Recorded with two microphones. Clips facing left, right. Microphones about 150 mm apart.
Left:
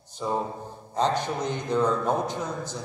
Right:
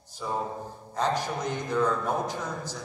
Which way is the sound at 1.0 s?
20° left (ahead or behind).